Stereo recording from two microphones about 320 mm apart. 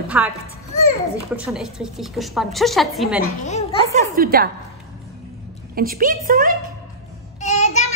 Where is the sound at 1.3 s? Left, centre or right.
Centre.